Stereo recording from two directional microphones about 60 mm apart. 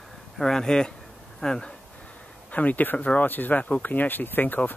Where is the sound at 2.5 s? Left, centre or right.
Left.